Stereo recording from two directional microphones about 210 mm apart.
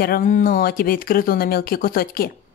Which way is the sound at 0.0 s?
40° left (ahead or behind).